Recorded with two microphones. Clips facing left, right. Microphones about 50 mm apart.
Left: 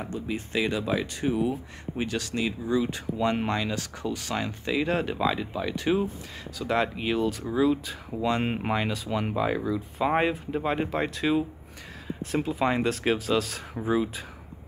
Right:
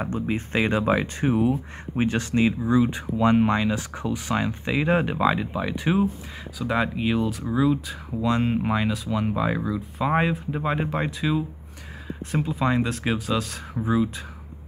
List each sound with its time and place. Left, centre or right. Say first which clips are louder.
0.0 s speech: right 5 dB; right; by 11.1 s centre
12.4 s speech: right 2 dB; centre